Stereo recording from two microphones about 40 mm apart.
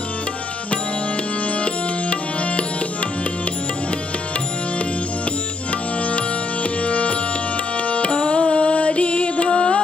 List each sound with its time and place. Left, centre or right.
1.5 s music: left
5.7 s music: left